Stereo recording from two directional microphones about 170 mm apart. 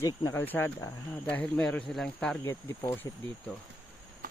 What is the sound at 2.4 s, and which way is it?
Speech, 20° left (ahead or behind).